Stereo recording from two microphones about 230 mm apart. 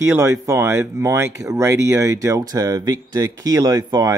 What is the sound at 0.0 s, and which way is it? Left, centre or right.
Speech, centre.